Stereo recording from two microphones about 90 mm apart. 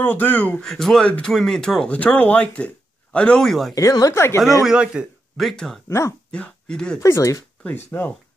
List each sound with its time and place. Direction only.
0.0 s speech: 20° left (ahead or behind)
3.4 s speech: centre (ahead or behind)
3.7 s speech: 40° left (ahead or behind)
4.6 s a man's voice: 10° right (ahead or behind)
5.4 s speech: 5° left (ahead or behind)
5.9 s speech: 30° left (ahead or behind)
6.3 s speech: 10° left (ahead or behind)
7.0 s speech: 35° left (ahead or behind)
7.6 s speech: 20° left (ahead or behind)